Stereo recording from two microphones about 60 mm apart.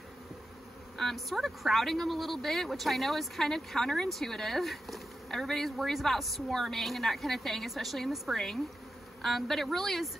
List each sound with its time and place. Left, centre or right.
0.9 s speech: centre